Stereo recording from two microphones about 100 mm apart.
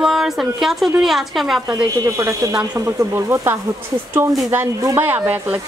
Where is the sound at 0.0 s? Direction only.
5° right (ahead or behind).